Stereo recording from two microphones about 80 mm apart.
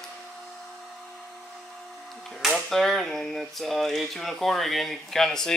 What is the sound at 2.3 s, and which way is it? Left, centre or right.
Speech, centre.